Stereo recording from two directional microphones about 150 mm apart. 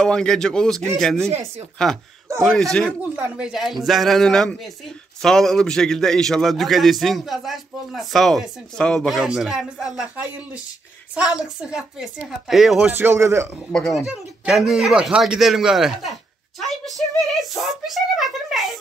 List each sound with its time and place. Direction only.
0.0 s a man's voice: 5° left (ahead or behind)
3.0 s a man's voice: 10° right (ahead or behind)
13.0 s speech: 20° right (ahead or behind)
13.7 s speech: 5° left (ahead or behind)